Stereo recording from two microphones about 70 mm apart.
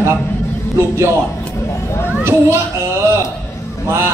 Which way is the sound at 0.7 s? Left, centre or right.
Right.